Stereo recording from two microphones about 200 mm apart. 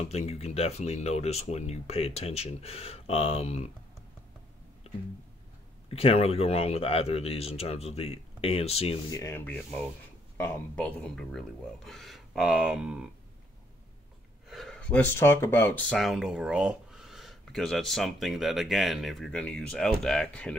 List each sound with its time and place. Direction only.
0.0 s speech: 30° left (ahead or behind)
5.9 s speech: 30° left (ahead or behind)
9.1 s rub: 15° left (ahead or behind)
10.3 s speech: 10° left (ahead or behind); by 13.1 s 5° right (ahead or behind)
14.5 s speech: centre (ahead or behind)